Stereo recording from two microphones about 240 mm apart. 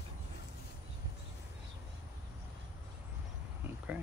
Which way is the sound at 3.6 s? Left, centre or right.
Centre.